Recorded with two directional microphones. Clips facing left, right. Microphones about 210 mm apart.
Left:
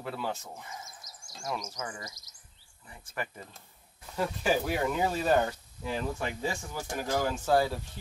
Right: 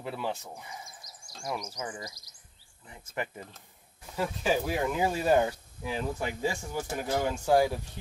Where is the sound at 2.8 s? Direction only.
20° right (ahead or behind).